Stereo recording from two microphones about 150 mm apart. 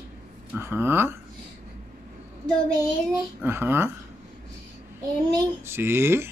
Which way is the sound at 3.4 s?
15° right (ahead or behind).